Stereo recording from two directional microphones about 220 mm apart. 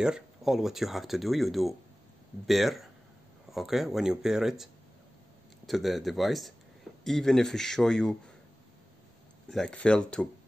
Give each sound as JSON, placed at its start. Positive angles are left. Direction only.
{"t": 0.0, "sound": "speech", "side_deg": 0}
{"t": 5.7, "sound": "speech", "side_deg": 0}
{"t": 9.5, "sound": "speech", "side_deg": 5}